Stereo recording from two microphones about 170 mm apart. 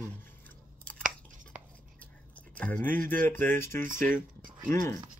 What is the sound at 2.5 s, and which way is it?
Speech, 10° left (ahead or behind).